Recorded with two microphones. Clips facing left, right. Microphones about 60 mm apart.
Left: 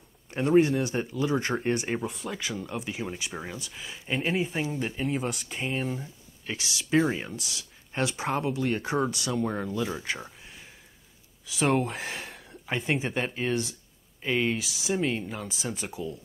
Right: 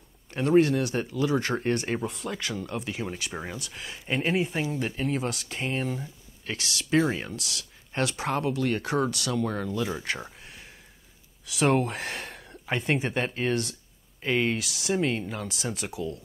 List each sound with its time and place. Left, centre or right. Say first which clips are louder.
0.3 s speech: even; centre
4.1 s speech: right 2 dB; centre
4.6 s speech: right 1 dB; centre
5.9 s speech: right 1 dB; centre
10.4 s a sound: right 1 dB; centre
11.4 s speech: right 2 dB; centre
14.6 s speech: right 1 dB; centre